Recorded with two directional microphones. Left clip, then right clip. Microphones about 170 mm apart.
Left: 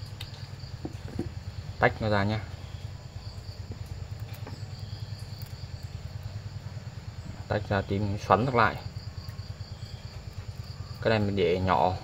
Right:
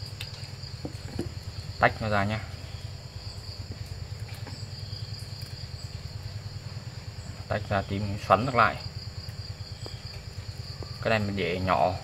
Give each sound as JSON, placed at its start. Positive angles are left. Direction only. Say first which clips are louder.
{"t": 1.8, "sound": "speech", "louder": "right 1 dB", "side_deg": 55}
{"t": 7.4, "sound": "speech", "louder": "even", "side_deg": 60}
{"t": 11.1, "sound": "speech", "louder": "left 2 dB", "side_deg": 65}